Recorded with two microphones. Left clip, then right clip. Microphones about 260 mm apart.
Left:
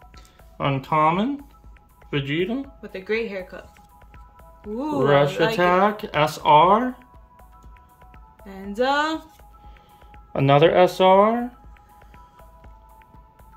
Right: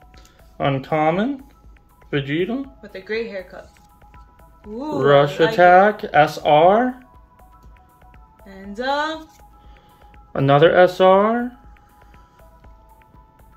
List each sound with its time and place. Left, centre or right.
0.6 s speech: centre
2.8 s speech: left
4.7 s speech: left
5.2 s speech: centre
8.5 s speech: left
10.3 s speech: centre